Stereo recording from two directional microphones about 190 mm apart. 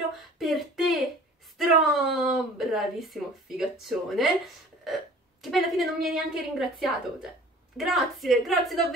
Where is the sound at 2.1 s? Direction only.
Centre (ahead or behind).